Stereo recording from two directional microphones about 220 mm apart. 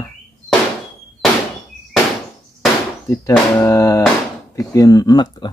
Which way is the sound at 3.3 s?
15° left (ahead or behind).